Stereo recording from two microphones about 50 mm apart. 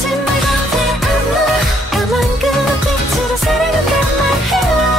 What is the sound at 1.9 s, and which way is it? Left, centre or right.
Music, centre.